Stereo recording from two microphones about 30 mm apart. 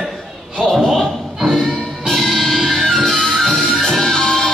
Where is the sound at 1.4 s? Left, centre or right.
Centre.